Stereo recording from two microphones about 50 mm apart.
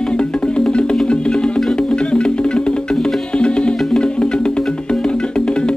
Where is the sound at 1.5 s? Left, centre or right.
Centre.